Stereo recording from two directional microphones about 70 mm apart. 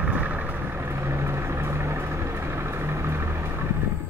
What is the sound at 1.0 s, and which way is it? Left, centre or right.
Vehicle, right.